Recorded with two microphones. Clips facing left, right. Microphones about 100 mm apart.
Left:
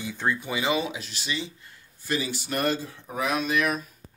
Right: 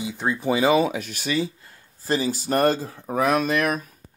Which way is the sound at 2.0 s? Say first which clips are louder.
Right 5 dB; 35° right (ahead or behind).